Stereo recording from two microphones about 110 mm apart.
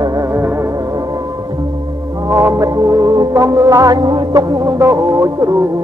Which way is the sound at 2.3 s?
30° right (ahead or behind).